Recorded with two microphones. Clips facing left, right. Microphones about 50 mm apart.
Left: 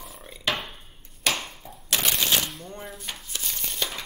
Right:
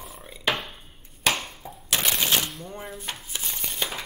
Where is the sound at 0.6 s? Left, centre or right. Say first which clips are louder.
Even; centre.